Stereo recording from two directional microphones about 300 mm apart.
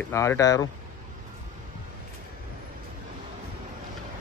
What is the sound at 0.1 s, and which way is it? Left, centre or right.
Speech, centre.